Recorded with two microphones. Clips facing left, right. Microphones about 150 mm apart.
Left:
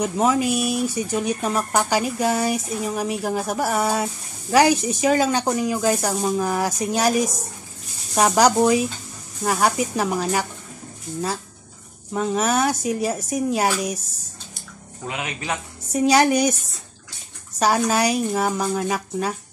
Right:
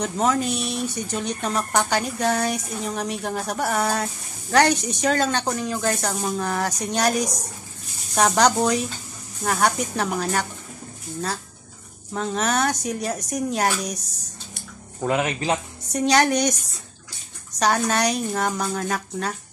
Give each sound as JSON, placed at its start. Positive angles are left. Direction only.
{"t": 0.0, "sound": "speech", "side_deg": 5}
{"t": 12.1, "sound": "speech", "side_deg": 5}
{"t": 15.0, "sound": "speech", "side_deg": -45}
{"t": 15.9, "sound": "speech", "side_deg": 5}
{"t": 17.6, "sound": "speech", "side_deg": 5}